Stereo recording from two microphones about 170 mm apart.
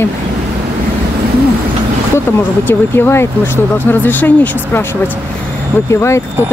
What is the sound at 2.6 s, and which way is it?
Speech, 15° left (ahead or behind).